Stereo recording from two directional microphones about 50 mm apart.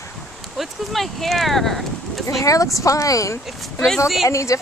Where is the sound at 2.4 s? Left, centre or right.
Left.